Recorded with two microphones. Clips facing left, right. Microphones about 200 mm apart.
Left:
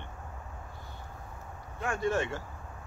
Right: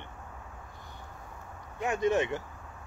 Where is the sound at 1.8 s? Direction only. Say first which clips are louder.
Right 3 dB; 20° right (ahead or behind).